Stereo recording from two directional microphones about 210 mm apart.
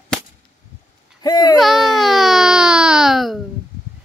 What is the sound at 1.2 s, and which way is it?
Speech, 20° left (ahead or behind).